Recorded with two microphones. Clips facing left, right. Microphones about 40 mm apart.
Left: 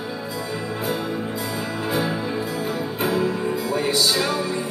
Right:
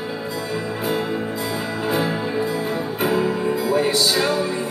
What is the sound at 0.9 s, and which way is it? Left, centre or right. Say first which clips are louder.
Music: right 3 dB; right.